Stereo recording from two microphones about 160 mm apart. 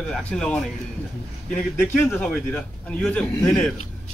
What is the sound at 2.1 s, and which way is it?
A man's voice, 5° left (ahead or behind).